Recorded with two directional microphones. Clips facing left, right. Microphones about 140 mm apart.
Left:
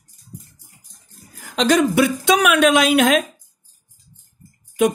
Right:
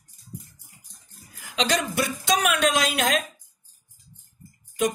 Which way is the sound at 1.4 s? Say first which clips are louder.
Left 9 dB; 50° left (ahead or behind).